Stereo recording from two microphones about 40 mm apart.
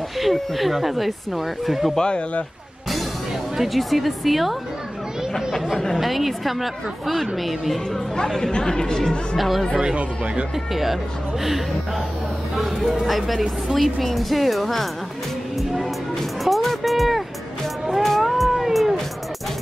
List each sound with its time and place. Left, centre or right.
0.2 s a woman's voice: centre
2.0 s speech: left
3.5 s a woman's voice: centre
5.9 s a woman's voice: centre
8.5 s speech: centre
9.4 s a woman's voice: centre
9.9 s speech: right
10.7 s a woman's voice: centre
12.5 s a woman's voice: centre
16.4 s music: centre
17.8 s cat: centre